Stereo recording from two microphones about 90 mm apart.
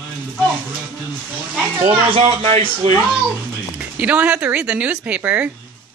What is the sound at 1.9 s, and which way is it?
Speech, 85° right.